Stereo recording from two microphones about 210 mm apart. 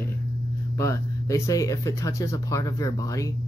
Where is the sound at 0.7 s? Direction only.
15° left (ahead or behind).